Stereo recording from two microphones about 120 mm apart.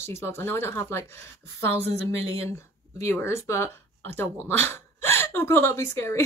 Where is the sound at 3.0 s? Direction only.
20° left (ahead or behind).